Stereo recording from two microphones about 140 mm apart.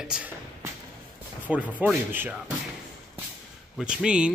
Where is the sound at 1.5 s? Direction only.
10° right (ahead or behind).